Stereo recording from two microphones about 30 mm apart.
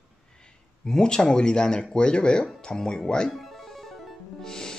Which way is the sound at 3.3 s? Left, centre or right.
Centre.